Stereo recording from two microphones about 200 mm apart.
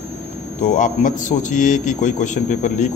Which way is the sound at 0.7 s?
40° left (ahead or behind).